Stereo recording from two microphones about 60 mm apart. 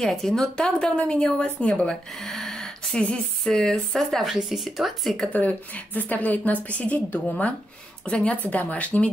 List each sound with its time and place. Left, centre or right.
0.0 s speech: centre
2.1 s gasp: centre
3.4 s speech: centre
4.2 s speech: centre
5.3 s a woman's voice: left